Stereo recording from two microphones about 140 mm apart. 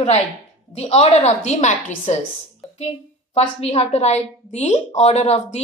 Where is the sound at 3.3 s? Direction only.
50° left (ahead or behind).